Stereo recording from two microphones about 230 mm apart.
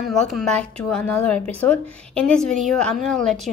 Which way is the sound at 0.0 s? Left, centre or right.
Centre.